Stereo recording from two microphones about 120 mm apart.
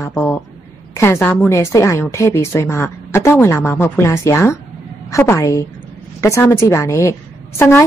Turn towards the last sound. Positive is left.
turn(degrees=20)  # may be behind; listen again after turning